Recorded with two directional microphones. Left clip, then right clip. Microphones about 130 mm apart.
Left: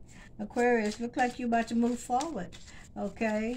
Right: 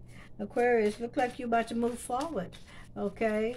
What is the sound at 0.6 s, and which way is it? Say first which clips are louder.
Speech: right 1 dB; 20° right (ahead or behind).